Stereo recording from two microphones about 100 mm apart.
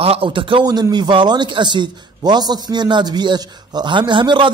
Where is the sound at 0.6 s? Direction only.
45° right (ahead or behind).